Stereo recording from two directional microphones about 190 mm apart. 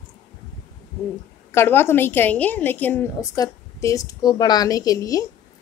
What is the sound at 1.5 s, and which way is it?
A woman's voice, 15° left (ahead or behind).